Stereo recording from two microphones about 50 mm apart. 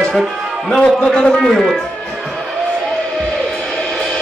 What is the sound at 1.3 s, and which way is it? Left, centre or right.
Speech, centre.